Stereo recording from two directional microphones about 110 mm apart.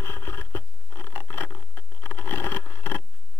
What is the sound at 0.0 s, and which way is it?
Scratch, 20° left (ahead or behind).